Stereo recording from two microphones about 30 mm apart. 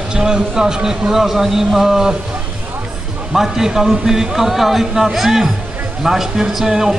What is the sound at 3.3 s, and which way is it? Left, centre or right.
A man's voice, centre.